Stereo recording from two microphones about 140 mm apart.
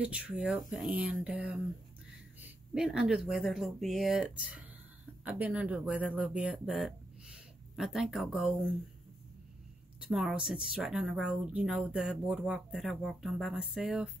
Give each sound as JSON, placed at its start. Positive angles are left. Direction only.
{"t": 0.0, "sound": "speech", "side_deg": -10}
{"t": 10.0, "sound": "speech", "side_deg": -5}